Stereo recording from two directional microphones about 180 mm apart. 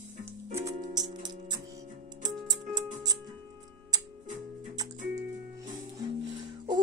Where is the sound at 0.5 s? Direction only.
20° right (ahead or behind).